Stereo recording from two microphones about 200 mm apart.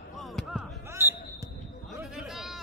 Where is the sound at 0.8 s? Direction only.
10° right (ahead or behind).